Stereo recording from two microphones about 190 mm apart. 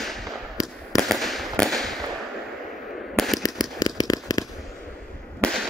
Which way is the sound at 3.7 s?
20° left (ahead or behind).